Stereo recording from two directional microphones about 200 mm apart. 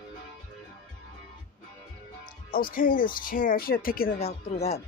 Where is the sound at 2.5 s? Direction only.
45° left (ahead or behind).